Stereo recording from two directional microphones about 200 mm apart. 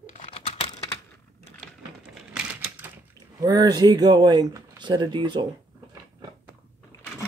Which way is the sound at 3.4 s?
15° right (ahead or behind).